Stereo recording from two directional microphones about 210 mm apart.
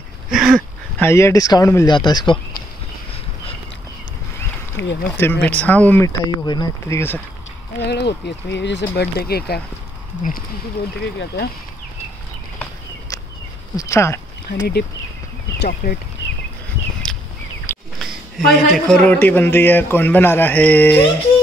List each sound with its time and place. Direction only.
0.3 s speech: centre (ahead or behind); by 2.3 s 20° left (ahead or behind)
4.8 s speech: 10° left (ahead or behind)
7.8 s speech: 55° left (ahead or behind)
13.7 s speech: 15° left (ahead or behind)
14.5 s speech: 55° left (ahead or behind)
15.6 s speech: 45° left (ahead or behind)
17.1 s a sound: centre (ahead or behind)
17.6 s a man's voice: centre (ahead or behind)